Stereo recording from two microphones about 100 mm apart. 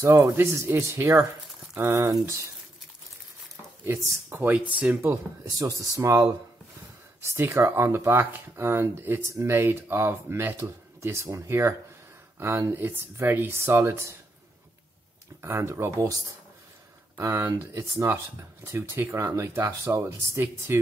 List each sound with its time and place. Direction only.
0.0 s speech: 30° right (ahead or behind)
3.8 s speech: 25° right (ahead or behind)
4.6 s speech: 15° right (ahead or behind)
15.4 s speech: 25° right (ahead or behind)
17.2 s speech: 30° right (ahead or behind)